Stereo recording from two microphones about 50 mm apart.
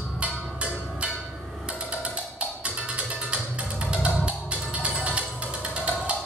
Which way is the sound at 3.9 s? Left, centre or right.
Right.